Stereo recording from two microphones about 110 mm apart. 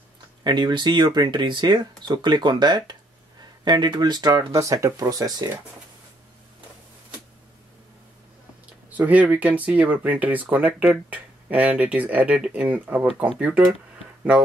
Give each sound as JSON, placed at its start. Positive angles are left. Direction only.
{"t": 0.4, "sound": "speech", "side_deg": -40}
{"t": 8.9, "sound": "speech", "side_deg": -15}